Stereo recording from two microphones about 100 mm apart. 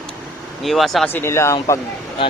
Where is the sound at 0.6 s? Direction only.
Centre (ahead or behind).